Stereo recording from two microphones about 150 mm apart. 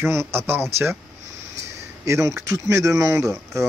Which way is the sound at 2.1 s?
20° right (ahead or behind).